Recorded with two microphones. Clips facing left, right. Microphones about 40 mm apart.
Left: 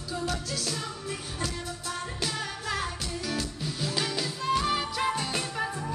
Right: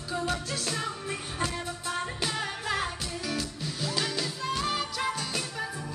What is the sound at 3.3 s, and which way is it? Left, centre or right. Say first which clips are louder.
Music: left 1 dB; centre.